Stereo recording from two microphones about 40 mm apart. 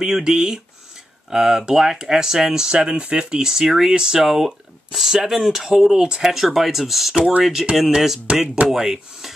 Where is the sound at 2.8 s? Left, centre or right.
Right; by 7.2 s centre.